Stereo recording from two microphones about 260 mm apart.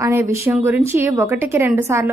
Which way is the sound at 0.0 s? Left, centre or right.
Centre.